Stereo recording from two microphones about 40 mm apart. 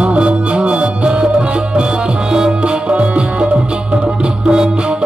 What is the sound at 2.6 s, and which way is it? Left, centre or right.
Music, right.